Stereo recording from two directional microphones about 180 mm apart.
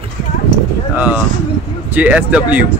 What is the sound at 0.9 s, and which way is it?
Speech, 10° right (ahead or behind).